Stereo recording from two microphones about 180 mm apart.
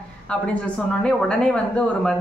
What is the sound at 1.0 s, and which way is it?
Speech, 5° left (ahead or behind).